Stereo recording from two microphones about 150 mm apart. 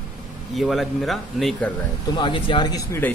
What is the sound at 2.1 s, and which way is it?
Speech, 35° left (ahead or behind).